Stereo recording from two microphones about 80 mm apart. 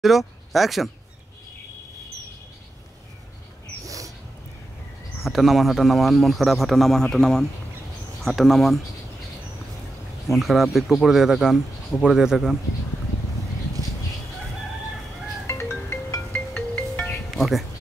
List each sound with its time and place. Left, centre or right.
0.0 s speech: centre
3.8 s dog: right
5.2 s speech: centre
10.2 s speech: centre
15.4 s music: left
16.5 s music: left
17.3 s speech: centre